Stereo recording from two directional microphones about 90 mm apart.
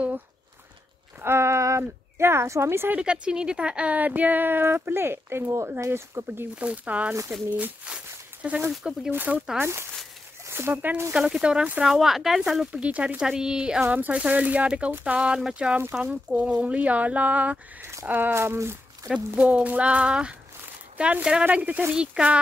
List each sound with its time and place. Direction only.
1.2 s speech: 30° right (ahead or behind)
3.0 s speech: 10° right (ahead or behind); by 6.4 s 30° right (ahead or behind)
6.5 s speech: 15° right (ahead or behind)
9.1 s speech: 20° right (ahead or behind)
10.4 s speech: 25° right (ahead or behind)
19.1 s speech: 10° right (ahead or behind)